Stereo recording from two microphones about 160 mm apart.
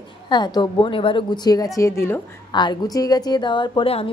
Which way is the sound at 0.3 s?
30° left (ahead or behind).